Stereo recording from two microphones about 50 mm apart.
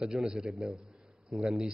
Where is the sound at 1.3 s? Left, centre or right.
Centre.